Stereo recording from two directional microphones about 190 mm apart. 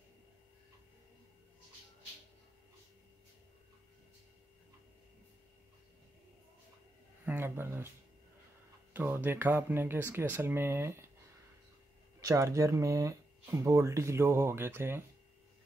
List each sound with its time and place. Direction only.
7.2 s speech: 10° right (ahead or behind)
8.9 s speech: 10° right (ahead or behind)
12.2 s speech: 15° right (ahead or behind)